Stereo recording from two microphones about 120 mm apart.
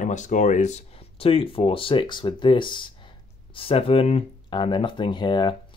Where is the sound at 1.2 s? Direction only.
50° left (ahead or behind).